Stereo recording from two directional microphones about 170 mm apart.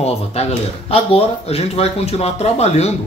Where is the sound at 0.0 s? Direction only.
40° left (ahead or behind).